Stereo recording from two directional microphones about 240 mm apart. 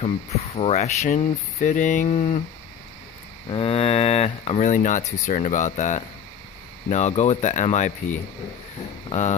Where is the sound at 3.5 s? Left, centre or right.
Left.